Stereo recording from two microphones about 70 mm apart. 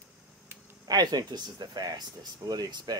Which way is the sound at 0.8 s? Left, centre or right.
Right.